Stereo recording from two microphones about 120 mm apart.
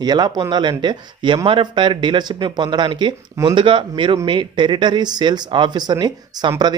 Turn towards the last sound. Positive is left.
turn(degrees=-35)  # may be behind; listen again after turning